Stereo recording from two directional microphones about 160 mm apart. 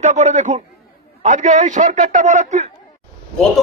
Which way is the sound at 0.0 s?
50° right (ahead or behind).